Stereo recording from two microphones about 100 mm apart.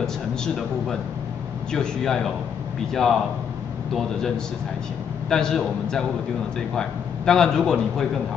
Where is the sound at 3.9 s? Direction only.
5° left (ahead or behind).